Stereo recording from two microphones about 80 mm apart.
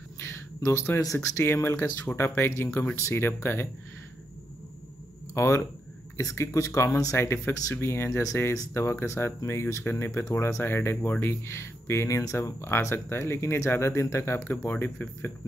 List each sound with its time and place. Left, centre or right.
0.2 s speech: left
5.3 s speech: left
11.4 s speech: left